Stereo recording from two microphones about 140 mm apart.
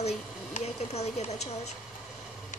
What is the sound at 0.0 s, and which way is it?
A woman's voice, 55° left (ahead or behind).